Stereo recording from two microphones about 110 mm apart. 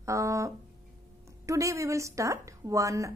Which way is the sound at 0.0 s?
30° right (ahead or behind).